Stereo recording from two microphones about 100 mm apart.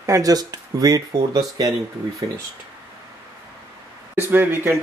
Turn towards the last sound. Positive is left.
turn(degrees=-20)  # may be behind; listen again after turning